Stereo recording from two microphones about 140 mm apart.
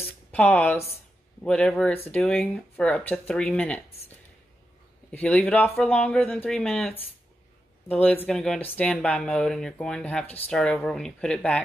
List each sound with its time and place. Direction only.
0.3 s speech: 10° left (ahead or behind)
5.1 s speech: 10° left (ahead or behind)
7.9 s speech: 10° left (ahead or behind)